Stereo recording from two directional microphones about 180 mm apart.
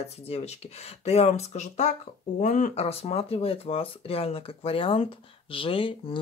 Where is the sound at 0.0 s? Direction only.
35° left (ahead or behind).